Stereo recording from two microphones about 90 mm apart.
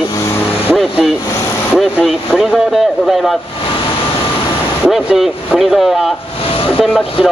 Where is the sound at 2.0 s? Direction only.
5° right (ahead or behind).